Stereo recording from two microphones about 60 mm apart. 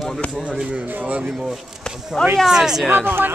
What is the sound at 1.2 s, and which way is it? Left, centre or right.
Speech, centre.